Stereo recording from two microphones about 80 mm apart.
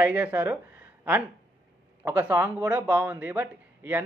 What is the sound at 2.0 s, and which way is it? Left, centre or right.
A man's voice, right.